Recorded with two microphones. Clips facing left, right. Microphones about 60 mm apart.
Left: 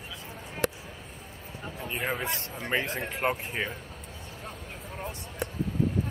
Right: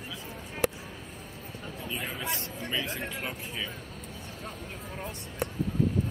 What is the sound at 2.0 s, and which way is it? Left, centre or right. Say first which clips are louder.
Speech: left 7 dB; left.